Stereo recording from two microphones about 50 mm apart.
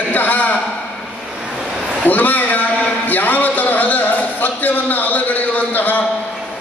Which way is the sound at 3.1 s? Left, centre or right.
Left.